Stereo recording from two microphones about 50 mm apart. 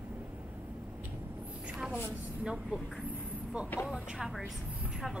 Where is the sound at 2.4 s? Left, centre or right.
Centre.